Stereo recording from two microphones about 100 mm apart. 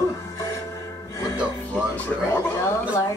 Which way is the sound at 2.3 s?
30° left (ahead or behind).